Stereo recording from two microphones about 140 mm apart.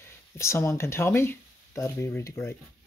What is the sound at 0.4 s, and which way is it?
Speech, 20° left (ahead or behind).